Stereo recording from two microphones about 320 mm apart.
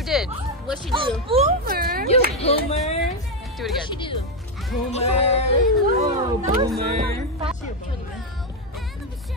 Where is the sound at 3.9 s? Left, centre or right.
Centre.